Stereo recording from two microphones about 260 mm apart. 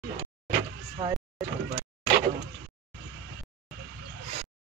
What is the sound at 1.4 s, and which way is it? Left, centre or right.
Speech, centre.